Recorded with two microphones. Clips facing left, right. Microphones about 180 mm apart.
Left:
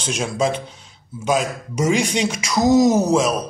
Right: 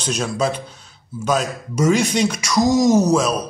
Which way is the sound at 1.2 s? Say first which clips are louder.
Even; 15° left (ahead or behind).